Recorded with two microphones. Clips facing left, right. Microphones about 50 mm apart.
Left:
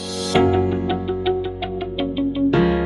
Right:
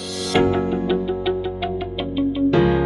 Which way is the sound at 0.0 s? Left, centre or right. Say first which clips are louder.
Left 1 dB; centre.